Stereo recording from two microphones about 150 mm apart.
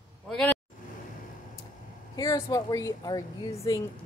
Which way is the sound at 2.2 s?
20° left (ahead or behind).